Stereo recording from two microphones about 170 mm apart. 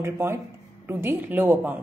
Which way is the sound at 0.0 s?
15° right (ahead or behind).